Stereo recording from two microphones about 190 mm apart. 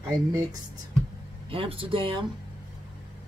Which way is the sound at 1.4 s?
30° right (ahead or behind).